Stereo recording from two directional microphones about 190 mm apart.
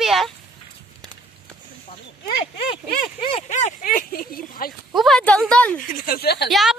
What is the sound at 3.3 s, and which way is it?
Speech, 40° left (ahead or behind).